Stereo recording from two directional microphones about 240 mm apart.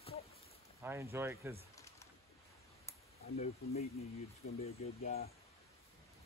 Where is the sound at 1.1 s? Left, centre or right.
Centre.